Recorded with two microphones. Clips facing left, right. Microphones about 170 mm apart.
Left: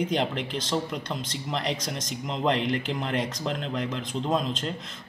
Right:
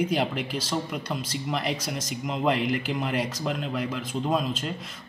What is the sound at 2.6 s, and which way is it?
Speech, 30° left (ahead or behind).